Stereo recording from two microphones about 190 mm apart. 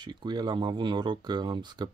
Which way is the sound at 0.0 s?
25° right (ahead or behind).